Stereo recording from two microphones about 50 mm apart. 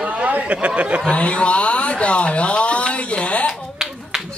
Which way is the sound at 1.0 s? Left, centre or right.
Left.